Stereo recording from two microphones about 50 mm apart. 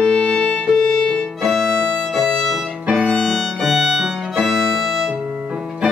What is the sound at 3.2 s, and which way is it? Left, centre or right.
Violin, centre.